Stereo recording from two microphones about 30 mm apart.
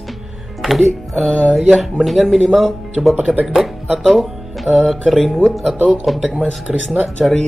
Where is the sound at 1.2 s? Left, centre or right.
Left.